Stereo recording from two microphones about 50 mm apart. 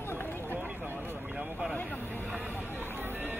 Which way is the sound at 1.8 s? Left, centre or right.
Left.